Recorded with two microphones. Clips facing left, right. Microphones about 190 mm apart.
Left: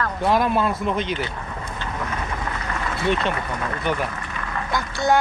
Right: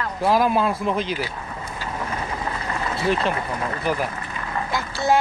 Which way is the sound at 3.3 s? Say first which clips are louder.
Right 1 dB; 30° right (ahead or behind).